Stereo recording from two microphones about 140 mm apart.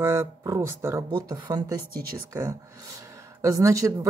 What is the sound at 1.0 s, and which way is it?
Speech, 30° right (ahead or behind).